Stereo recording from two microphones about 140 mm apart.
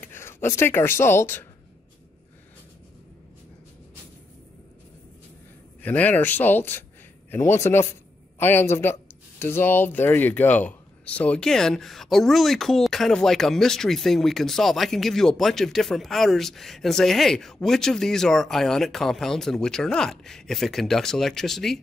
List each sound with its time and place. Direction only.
0.0 s speech: 15° left (ahead or behind)
5.8 s speech: 10° left (ahead or behind)